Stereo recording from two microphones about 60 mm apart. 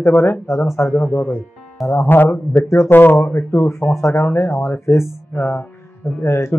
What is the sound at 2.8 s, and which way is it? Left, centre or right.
Speech, left.